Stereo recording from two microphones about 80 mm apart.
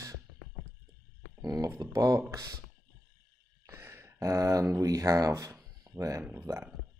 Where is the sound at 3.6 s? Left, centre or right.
Right.